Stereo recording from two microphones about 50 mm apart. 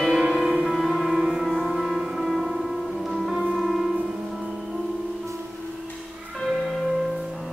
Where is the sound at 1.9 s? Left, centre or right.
Centre.